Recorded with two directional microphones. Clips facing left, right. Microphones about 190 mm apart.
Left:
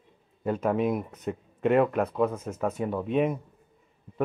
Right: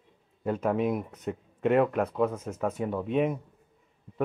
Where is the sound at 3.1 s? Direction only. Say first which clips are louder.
Left 1 dB; 10° left (ahead or behind).